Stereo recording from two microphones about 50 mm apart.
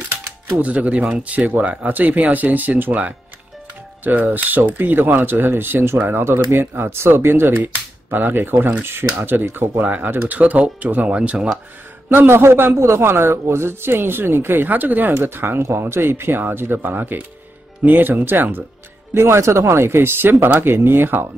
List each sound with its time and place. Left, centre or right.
0.1 s typewriter: right
1.1 s speech: right
11.1 s speech: right
12.3 s speech: right
12.7 s speech: right
19.1 s speech: right